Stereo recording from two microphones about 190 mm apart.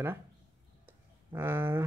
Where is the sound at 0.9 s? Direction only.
10° right (ahead or behind).